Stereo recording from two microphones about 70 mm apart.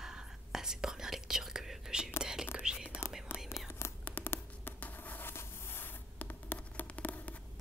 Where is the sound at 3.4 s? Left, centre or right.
Left.